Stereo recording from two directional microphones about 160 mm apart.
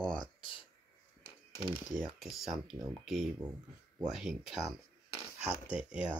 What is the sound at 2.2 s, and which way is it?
Speech, centre (ahead or behind).